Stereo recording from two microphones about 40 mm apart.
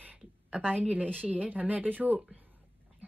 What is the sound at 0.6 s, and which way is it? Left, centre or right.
Speech, right.